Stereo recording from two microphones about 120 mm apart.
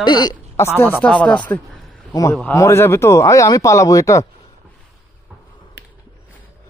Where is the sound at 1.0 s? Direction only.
10° left (ahead or behind).